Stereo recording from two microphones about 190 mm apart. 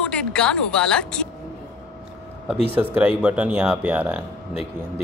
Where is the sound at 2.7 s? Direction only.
5° right (ahead or behind).